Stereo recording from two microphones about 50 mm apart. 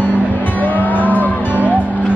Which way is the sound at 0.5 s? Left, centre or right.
Left.